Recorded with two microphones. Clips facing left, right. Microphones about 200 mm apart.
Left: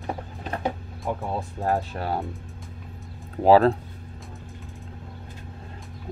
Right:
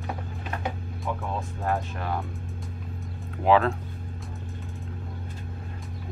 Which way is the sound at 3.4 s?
35° left (ahead or behind).